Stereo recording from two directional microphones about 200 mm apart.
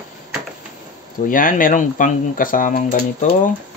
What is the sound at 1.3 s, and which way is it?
Speech, 45° left (ahead or behind).